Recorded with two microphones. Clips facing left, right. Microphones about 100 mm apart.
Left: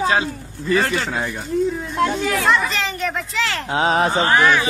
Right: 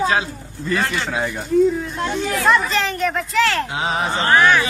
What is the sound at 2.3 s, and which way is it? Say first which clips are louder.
Speech: right 1 dB; centre (ahead or behind).